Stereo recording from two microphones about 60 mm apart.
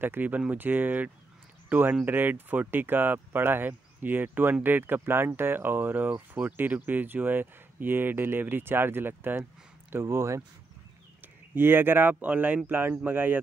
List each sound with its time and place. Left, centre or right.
0.0 s speech: right
11.5 s speech: right